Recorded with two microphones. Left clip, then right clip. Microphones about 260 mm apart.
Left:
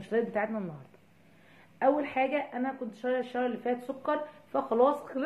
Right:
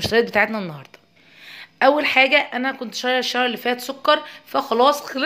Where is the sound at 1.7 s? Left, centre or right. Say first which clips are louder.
Right 12 dB; right.